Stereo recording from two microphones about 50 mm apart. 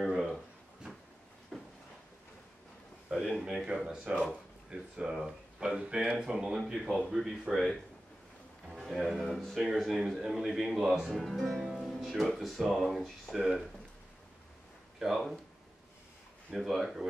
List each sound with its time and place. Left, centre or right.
0.0 s a sound: centre
1.5 s a sound: centre
3.1 s speech: centre
8.6 s a sound: centre
9.2 s speech: centre
11.7 s music: centre
12.4 s speech: centre
15.0 s speech: centre
16.5 s speech: centre